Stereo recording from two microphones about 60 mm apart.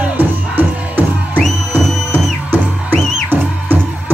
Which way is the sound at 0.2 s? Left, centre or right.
Right.